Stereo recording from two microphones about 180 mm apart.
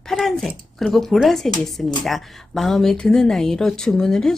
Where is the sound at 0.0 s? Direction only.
Centre (ahead or behind).